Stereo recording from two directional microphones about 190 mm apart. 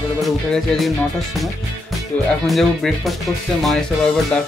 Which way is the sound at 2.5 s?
Centre (ahead or behind).